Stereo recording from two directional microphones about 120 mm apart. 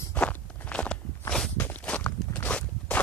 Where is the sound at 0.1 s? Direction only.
10° left (ahead or behind).